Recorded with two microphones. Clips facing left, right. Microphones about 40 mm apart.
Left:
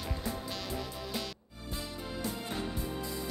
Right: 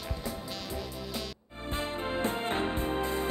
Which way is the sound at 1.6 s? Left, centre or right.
Right.